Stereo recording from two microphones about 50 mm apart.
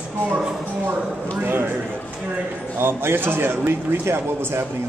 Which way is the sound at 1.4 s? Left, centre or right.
Right.